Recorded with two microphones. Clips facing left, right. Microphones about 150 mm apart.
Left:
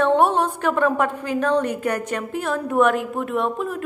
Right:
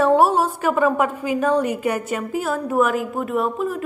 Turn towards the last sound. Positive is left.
turn(degrees=0)  # may be behind; listen again after turning